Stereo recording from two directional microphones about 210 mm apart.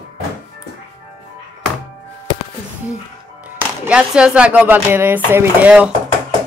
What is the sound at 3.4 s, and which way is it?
Speech, 10° right (ahead or behind).